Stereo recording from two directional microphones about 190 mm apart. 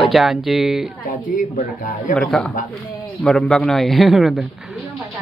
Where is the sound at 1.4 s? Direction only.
40° left (ahead or behind).